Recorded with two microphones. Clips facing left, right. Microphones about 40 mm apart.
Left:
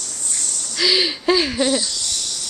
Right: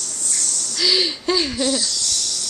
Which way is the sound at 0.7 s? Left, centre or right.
Centre.